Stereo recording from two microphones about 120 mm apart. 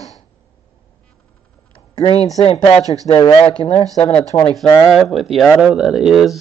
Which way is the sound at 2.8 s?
30° right (ahead or behind).